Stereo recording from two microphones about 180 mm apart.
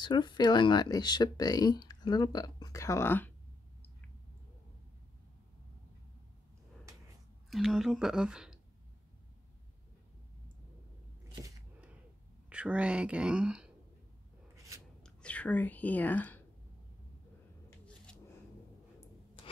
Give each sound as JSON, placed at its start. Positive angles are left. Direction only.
{"t": 0.0, "sound": "speech", "side_deg": 25}
{"t": 7.4, "sound": "speech", "side_deg": 0}
{"t": 12.4, "sound": "speech", "side_deg": -5}
{"t": 14.5, "sound": "a sound", "side_deg": -15}
{"t": 15.0, "sound": "speech", "side_deg": 5}
{"t": 17.6, "sound": "scissors", "side_deg": 5}